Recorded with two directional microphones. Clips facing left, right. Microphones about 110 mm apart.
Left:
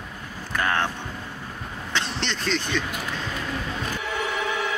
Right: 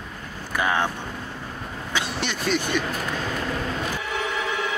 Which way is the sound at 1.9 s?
10° right (ahead or behind).